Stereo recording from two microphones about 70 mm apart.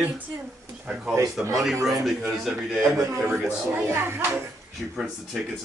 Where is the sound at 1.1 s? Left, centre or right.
Right.